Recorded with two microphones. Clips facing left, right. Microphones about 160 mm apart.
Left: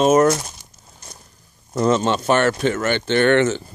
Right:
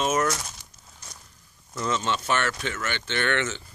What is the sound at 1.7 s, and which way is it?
Speech, 40° left (ahead or behind).